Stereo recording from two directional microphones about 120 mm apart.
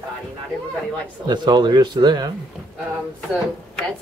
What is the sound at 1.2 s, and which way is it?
A man's voice, 40° right (ahead or behind).